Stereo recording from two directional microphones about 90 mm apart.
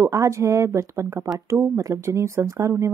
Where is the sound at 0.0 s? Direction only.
35° right (ahead or behind).